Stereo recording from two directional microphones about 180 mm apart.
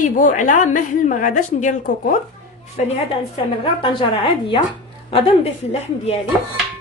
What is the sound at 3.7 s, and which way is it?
A woman's voice, 30° left (ahead or behind).